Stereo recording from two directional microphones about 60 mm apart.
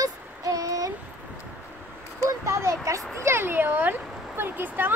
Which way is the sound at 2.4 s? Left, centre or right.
Right.